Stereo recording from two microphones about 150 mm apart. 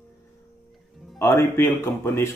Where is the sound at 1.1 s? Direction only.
15° left (ahead or behind).